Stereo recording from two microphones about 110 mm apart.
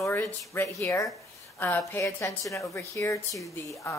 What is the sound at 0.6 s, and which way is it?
A woman's voice, 25° left (ahead or behind).